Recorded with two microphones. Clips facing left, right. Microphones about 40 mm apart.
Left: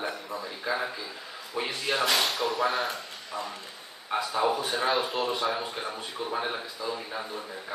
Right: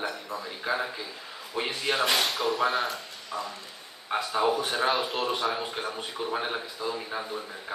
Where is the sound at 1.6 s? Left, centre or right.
Centre.